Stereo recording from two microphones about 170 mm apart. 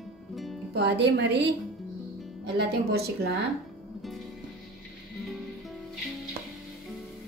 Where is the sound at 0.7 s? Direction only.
85° right.